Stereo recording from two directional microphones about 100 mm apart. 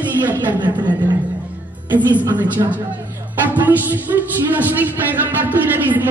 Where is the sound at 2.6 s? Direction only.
50° right (ahead or behind).